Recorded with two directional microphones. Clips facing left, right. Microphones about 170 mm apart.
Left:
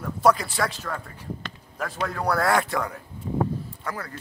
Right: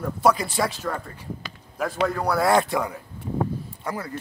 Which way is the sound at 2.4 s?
15° right (ahead or behind).